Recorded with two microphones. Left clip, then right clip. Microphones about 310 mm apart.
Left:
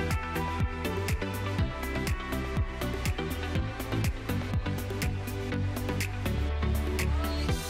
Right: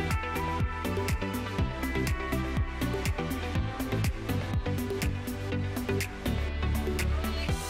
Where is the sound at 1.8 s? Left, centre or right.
Centre.